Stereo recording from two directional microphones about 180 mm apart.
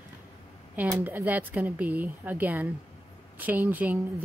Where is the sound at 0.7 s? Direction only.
10° right (ahead or behind).